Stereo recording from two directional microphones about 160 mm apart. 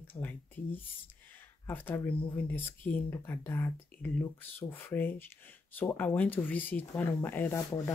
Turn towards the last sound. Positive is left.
turn(degrees=15)  # may be behind; listen again after turning